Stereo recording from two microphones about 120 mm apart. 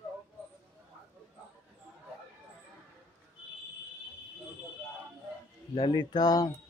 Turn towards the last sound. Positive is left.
turn(degrees=35)  # may be behind; listen again after turning